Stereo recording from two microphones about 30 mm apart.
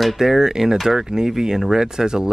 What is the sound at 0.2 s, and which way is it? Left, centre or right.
Speech, centre.